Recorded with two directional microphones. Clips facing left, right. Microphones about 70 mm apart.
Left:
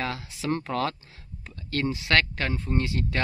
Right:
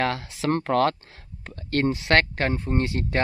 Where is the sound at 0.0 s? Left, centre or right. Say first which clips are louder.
Right 6 dB; right.